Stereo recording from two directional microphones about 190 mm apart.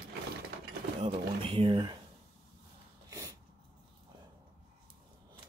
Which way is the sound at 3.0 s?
20° right (ahead or behind).